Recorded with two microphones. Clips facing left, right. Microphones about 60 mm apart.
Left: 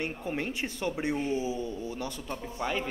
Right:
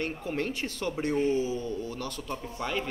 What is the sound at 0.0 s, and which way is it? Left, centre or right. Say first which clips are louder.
A woman's voice: right 1 dB; centre.